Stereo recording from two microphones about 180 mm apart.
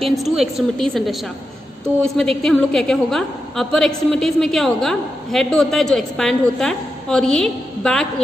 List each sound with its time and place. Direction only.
0.0 s a woman's voice: centre (ahead or behind)
2.1 s a woman's voice: 5° left (ahead or behind)